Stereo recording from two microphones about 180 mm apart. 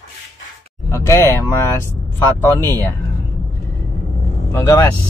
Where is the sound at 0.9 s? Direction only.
15° left (ahead or behind).